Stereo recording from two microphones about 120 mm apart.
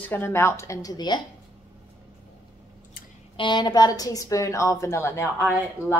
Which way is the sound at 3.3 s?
40° left (ahead or behind).